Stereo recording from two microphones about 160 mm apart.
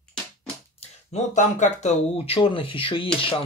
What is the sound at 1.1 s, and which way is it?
Speech, 50° left (ahead or behind).